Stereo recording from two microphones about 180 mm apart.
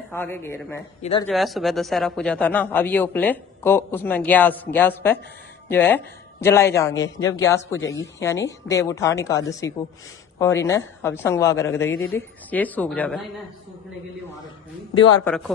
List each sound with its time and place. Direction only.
0.1 s speech: 10° left (ahead or behind)
1.2 s speech: centre (ahead or behind)
15.2 s speech: 5° left (ahead or behind)